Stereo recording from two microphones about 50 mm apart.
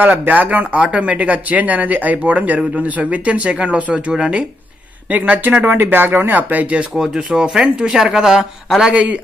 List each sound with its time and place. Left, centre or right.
0.2 s speech: right; by 4.5 s centre
5.1 s speech: right
7.0 s speech: centre
8.9 s speech: right